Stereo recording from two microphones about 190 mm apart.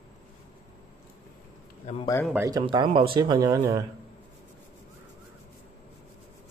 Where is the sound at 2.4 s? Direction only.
20° right (ahead or behind).